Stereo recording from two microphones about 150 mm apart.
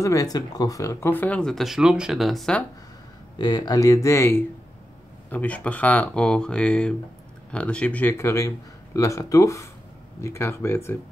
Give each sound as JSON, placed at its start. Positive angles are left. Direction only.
{"t": 0.0, "sound": "speech", "side_deg": 20}
{"t": 3.3, "sound": "speech", "side_deg": 25}